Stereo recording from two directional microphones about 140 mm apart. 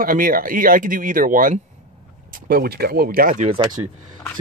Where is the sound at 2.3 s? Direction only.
90° right.